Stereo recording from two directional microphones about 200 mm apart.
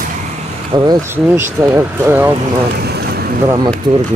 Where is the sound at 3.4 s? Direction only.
20° right (ahead or behind).